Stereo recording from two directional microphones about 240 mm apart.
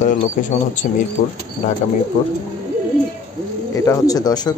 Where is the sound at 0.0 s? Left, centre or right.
Left.